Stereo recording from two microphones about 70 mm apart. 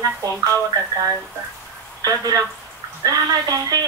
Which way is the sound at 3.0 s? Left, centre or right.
Right.